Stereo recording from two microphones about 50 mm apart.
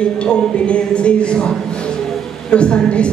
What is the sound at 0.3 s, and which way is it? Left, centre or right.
A man's voice, left.